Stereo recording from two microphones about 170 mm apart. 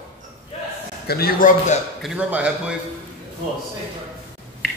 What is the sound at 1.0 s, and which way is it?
Speech, 65° left (ahead or behind).